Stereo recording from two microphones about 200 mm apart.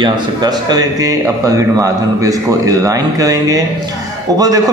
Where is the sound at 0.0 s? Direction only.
20° right (ahead or behind).